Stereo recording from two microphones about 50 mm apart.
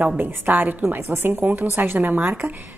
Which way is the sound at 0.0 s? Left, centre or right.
Right.